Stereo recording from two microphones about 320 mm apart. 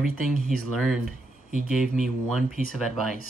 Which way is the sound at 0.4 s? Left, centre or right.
Centre.